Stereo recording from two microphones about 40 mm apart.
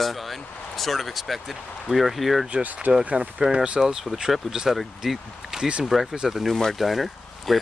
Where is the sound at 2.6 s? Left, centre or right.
Right.